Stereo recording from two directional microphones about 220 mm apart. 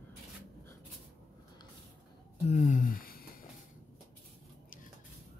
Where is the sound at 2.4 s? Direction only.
30° left (ahead or behind).